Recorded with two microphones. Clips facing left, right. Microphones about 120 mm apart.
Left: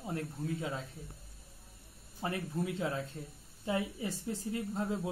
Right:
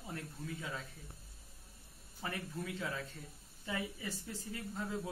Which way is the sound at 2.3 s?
20° left (ahead or behind).